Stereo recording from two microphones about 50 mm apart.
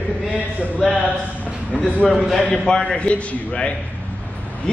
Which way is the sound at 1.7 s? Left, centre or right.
Centre.